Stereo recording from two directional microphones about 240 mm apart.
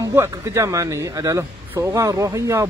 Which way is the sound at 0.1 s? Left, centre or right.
Centre.